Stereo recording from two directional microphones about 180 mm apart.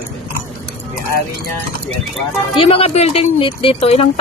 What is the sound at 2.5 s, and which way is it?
Speech, 30° left (ahead or behind).